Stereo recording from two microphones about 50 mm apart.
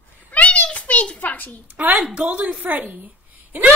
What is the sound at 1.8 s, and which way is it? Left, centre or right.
A woman's voice, right.